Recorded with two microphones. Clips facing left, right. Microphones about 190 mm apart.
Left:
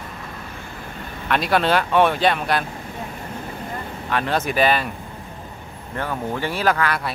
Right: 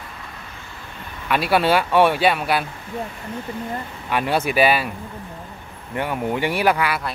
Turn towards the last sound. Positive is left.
turn(degrees=-10)  # may be behind; listen again after turning